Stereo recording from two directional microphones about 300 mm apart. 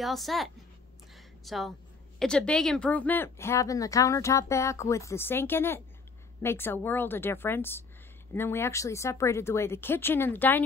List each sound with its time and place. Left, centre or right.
0.0 s a woman's voice: centre
1.1 s a sound: centre
2.1 s speech: centre